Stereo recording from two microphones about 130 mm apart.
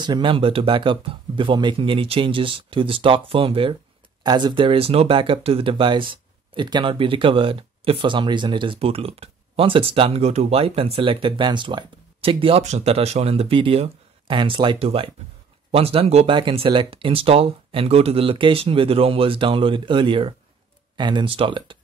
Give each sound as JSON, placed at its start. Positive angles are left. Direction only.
{"t": 0.0, "sound": "speech", "side_deg": -35}
{"t": 4.2, "sound": "speech", "side_deg": -35}